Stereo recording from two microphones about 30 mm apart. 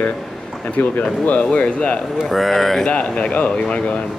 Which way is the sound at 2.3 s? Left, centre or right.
Centre.